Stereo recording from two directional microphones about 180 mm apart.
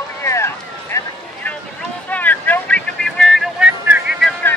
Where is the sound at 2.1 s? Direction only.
10° left (ahead or behind).